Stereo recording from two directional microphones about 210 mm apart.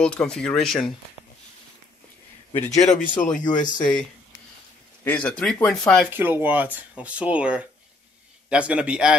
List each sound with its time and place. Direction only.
0.0 s speech: 5° left (ahead or behind)
2.5 s speech: 35° left (ahead or behind)
5.0 s speech: 5° left (ahead or behind)
6.1 s speech: 10° right (ahead or behind)